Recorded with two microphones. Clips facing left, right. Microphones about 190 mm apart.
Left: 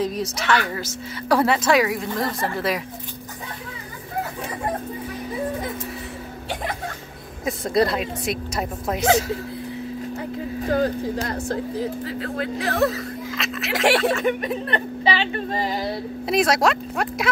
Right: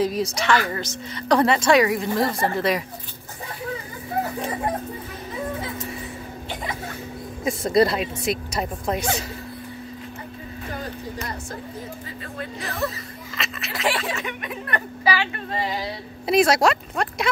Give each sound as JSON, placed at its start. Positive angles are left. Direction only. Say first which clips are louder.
{"t": 0.0, "sound": "a woman's voice", "louder": "right 2 dB", "side_deg": 0}
{"t": 7.4, "sound": "a woman's voice", "louder": "right 2 dB", "side_deg": 0}
{"t": 11.2, "sound": "speech", "louder": "left 7 dB", "side_deg": 75}
{"t": 12.9, "sound": "speech", "louder": "left 7 dB", "side_deg": 0}
{"t": 13.7, "sound": "a sound", "louder": "left 7 dB", "side_deg": 75}
{"t": 14.2, "sound": "speech", "louder": "left 9 dB", "side_deg": 35}
{"t": 15.5, "sound": "a sound", "louder": "even", "side_deg": 45}
{"t": 16.3, "sound": "a woman's voice", "louder": "right 2 dB", "side_deg": 0}